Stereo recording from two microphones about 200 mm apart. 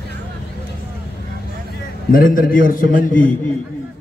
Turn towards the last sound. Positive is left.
turn(degrees=40)  # may be behind; listen again after turning